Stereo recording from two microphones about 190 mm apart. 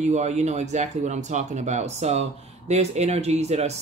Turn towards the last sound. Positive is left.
turn(degrees=-35)  # may be behind; listen again after turning